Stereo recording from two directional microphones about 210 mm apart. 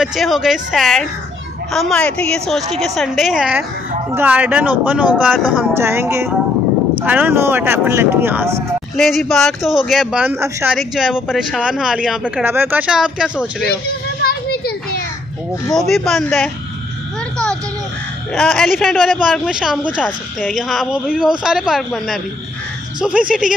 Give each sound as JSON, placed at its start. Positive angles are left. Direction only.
{"t": 0.0, "sound": "speech", "side_deg": 0}
{"t": 8.9, "sound": "speech", "side_deg": 0}
{"t": 14.2, "sound": "children playing", "side_deg": 45}
{"t": 15.9, "sound": "speech", "side_deg": 0}
{"t": 18.3, "sound": "speech", "side_deg": 5}